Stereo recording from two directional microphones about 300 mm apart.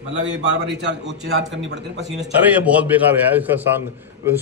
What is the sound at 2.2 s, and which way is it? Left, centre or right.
A man's voice, centre.